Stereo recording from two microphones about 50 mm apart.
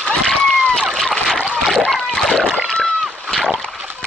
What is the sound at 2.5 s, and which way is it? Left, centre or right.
Splash, centre.